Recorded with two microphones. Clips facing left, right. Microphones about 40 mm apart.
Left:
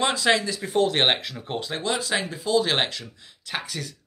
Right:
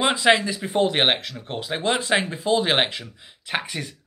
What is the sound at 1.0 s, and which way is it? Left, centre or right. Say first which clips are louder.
Speech: right 1 dB; centre.